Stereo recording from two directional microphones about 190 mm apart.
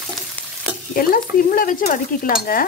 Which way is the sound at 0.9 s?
50° left (ahead or behind).